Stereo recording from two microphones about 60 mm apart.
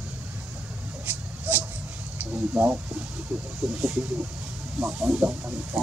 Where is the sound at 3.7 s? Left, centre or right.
Right.